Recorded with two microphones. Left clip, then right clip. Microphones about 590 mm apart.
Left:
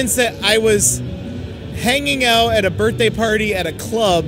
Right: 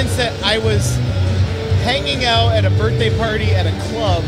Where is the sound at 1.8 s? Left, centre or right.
Left.